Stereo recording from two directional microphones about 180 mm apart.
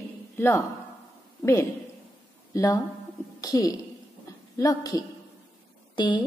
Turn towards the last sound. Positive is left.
turn(degrees=25)  # may be behind; listen again after turning